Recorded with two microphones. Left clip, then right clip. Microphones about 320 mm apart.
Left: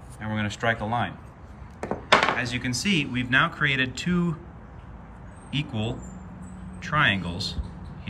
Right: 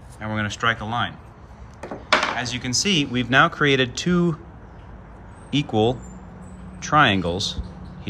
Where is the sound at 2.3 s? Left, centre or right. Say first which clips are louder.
Right 3 dB; centre.